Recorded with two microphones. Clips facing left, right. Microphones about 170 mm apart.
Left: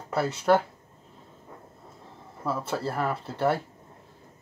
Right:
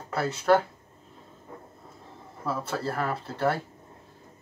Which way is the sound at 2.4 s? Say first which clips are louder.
Left 1 dB; 15° left (ahead or behind).